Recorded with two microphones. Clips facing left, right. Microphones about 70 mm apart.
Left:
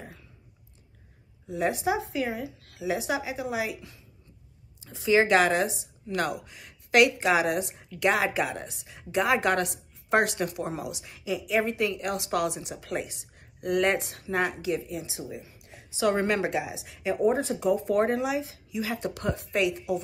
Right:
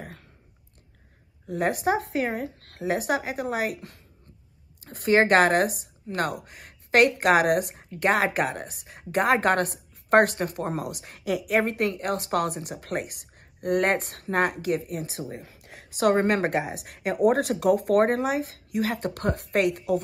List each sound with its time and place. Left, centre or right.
1.5 s a woman's voice: right
15.4 s a sound: right
16.0 s a woman's voice: right